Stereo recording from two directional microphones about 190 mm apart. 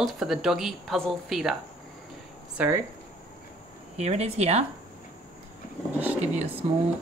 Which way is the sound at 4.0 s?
35° right (ahead or behind).